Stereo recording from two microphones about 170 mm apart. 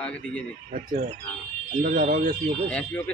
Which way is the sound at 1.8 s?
55° right (ahead or behind).